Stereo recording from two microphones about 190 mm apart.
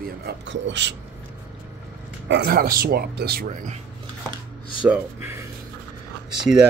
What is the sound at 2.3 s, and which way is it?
Speech, 55° right (ahead or behind).